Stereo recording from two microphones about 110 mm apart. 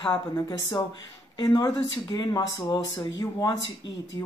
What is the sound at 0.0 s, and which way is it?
A woman's voice, 40° left (ahead or behind).